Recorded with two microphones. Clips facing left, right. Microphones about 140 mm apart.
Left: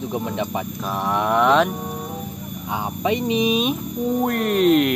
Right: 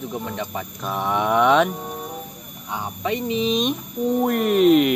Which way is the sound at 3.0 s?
20° left (ahead or behind).